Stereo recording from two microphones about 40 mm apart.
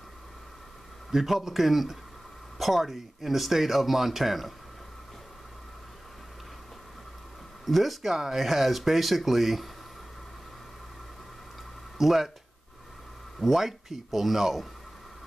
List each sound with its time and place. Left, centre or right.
1.1 s speech: centre
7.6 s speech: centre
12.0 s speech: centre
13.4 s speech: centre